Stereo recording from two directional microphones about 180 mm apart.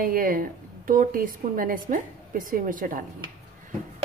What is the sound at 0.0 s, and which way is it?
A woman's voice, 50° right (ahead or behind).